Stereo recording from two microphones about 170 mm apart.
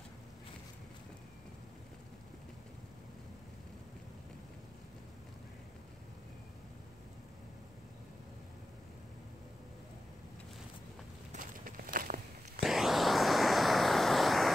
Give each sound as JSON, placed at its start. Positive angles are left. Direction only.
{"t": 11.3, "sound": "walk", "side_deg": -55}
{"t": 12.5, "sound": "vehicle", "side_deg": 0}